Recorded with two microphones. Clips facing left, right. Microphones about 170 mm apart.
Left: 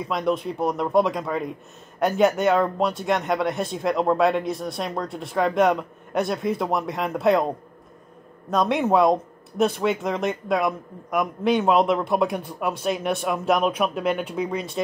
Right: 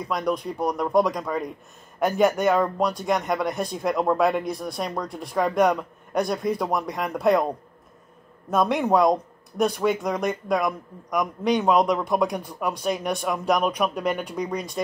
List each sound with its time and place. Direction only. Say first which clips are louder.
0.0 s speech: left 2 dB; centre (ahead or behind)
5.0 s speech: left 2 dB; 25° left (ahead or behind)
5.3 s speech: left 1 dB; centre (ahead or behind)
8.5 s speech: even; centre (ahead or behind)